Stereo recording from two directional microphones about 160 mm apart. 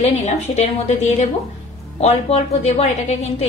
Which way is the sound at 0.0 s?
45° left (ahead or behind).